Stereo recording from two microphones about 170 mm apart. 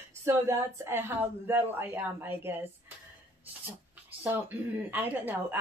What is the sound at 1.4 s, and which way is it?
A woman's voice, 10° right (ahead or behind).